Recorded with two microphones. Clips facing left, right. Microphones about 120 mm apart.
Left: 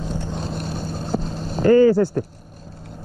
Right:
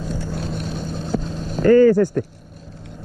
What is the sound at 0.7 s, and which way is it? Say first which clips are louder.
Vehicle: right 1 dB; 45° left (ahead or behind).